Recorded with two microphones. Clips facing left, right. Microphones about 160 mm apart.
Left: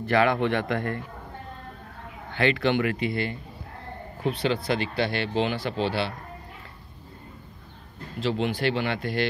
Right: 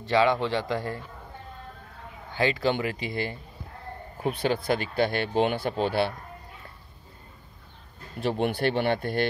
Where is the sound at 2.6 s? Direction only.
30° right (ahead or behind).